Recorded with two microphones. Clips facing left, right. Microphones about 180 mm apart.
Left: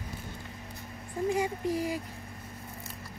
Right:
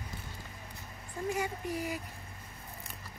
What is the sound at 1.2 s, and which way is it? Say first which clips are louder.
Speech: left 5 dB; 30° left (ahead or behind).